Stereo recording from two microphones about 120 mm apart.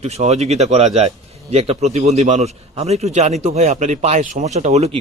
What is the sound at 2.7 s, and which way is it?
A man's voice, 60° right (ahead or behind).